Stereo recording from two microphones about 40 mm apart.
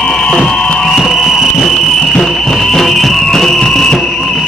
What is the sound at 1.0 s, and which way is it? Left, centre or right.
Music, centre.